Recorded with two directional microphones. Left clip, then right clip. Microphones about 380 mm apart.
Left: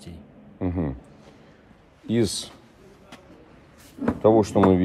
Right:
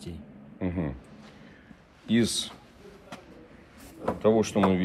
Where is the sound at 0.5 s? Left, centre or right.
Centre.